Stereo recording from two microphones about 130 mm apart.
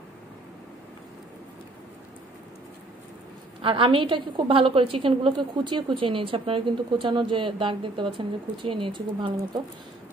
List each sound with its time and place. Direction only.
3.6 s a woman's voice: 45° right (ahead or behind)